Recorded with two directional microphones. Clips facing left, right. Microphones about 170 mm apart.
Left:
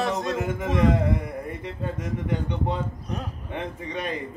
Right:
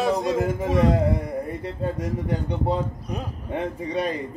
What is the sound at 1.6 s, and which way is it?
A man's voice, 35° right (ahead or behind).